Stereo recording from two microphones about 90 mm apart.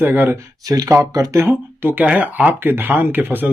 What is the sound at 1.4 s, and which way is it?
Speech, 20° right (ahead or behind).